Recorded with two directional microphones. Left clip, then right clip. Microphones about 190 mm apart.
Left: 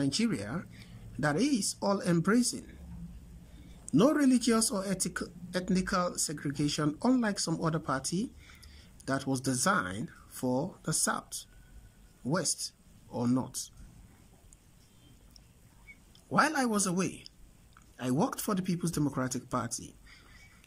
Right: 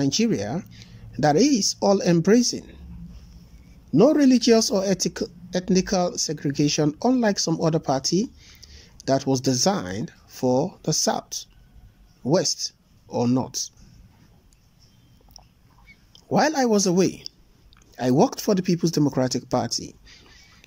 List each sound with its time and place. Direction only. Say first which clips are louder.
0.0 s speech: right 9 dB; 15° right (ahead or behind)
4.1 s speech: right 10 dB; 15° right (ahead or behind)
12.3 s speech: right 11 dB; 15° right (ahead or behind)
16.1 s a man's voice: right 6 dB; 15° right (ahead or behind)